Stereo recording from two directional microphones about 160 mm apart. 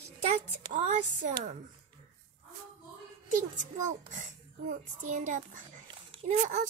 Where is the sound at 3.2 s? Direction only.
50° right (ahead or behind).